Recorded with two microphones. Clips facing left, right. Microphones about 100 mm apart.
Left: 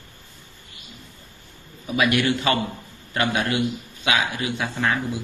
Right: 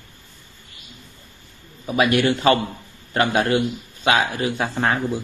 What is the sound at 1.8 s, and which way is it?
Speech, 35° right (ahead or behind).